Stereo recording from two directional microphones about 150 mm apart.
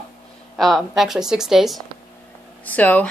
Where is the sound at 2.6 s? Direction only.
10° left (ahead or behind).